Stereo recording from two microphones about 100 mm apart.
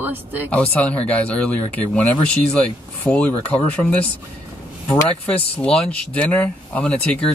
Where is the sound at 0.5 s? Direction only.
15° left (ahead or behind).